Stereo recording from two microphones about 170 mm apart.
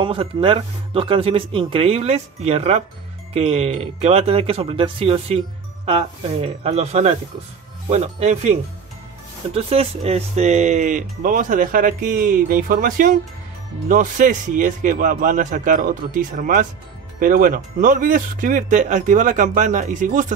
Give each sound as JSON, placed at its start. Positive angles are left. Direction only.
{"t": 0.0, "sound": "speech", "side_deg": -30}
{"t": 6.4, "sound": "speech", "side_deg": -40}